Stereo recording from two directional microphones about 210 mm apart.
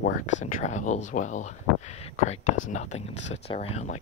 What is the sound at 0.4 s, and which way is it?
Speech, 35° left (ahead or behind).